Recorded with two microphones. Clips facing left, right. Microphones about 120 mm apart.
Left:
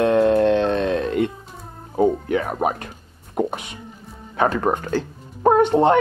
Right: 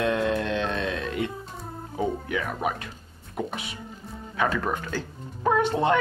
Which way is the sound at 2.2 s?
35° left (ahead or behind).